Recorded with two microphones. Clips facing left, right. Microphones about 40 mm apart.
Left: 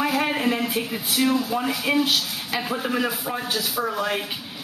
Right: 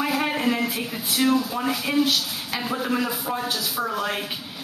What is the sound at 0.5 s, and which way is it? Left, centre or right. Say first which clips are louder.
A woman's voice: left 1 dB; centre.